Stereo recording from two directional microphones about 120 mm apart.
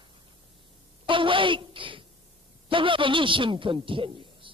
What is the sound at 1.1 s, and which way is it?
A woman's voice, 45° right (ahead or behind).